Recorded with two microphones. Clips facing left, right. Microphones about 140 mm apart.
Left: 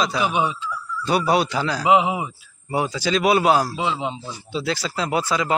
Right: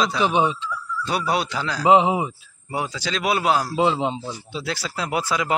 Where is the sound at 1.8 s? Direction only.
35° right (ahead or behind).